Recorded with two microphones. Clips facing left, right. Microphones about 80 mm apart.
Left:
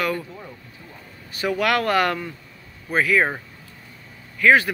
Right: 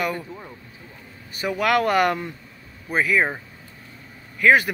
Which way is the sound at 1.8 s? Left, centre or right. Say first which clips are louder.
Right 1 dB; right.